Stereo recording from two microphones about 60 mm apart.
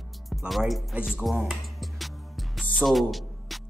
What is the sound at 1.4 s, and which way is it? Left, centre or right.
Music, centre.